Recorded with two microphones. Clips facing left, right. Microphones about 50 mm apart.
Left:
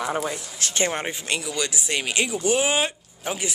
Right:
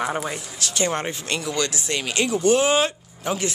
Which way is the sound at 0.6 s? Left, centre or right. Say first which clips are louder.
Even; left.